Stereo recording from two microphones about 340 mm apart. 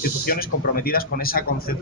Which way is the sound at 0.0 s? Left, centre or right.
Left.